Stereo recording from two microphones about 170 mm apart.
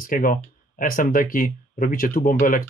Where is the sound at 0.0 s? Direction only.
55° left (ahead or behind).